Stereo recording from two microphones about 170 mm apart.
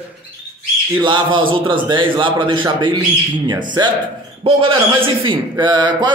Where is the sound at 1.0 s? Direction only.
30° right (ahead or behind).